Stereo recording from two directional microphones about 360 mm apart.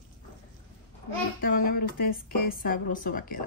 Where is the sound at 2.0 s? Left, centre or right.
Left.